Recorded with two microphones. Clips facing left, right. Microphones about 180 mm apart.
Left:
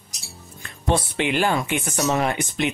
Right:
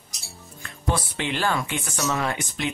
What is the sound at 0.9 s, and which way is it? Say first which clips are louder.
Speech: left 5 dB; 15° left (ahead or behind).